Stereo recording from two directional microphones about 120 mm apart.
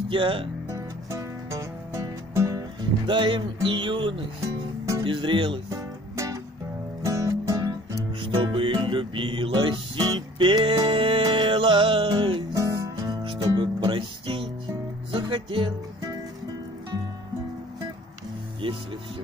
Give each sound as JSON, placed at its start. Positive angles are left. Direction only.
{"t": 0.1, "sound": "speech", "side_deg": -45}
{"t": 0.7, "sound": "music", "side_deg": -25}
{"t": 3.1, "sound": "speech", "side_deg": -45}
{"t": 5.7, "sound": "music", "side_deg": -30}
{"t": 8.2, "sound": "music", "side_deg": -45}
{"t": 12.5, "sound": "music", "side_deg": -30}
{"t": 13.2, "sound": "music", "side_deg": -45}